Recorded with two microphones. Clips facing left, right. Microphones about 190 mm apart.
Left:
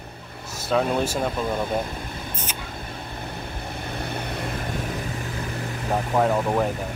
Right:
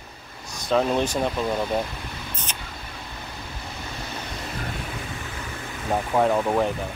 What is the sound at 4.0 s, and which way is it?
Vehicle, 60° left (ahead or behind).